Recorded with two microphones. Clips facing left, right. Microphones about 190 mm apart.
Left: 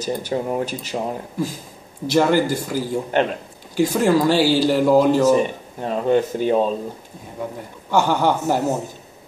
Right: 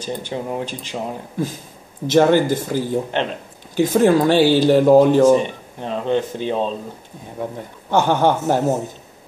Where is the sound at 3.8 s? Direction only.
20° right (ahead or behind).